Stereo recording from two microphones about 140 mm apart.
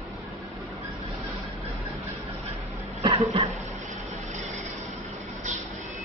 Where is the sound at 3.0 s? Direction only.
35° right (ahead or behind).